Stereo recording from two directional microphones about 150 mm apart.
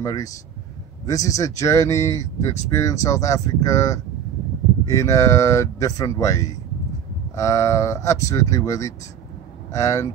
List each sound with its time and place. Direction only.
0.0 s speech: 25° left (ahead or behind)